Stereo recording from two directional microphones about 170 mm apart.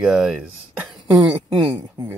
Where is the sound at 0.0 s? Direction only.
5° right (ahead or behind).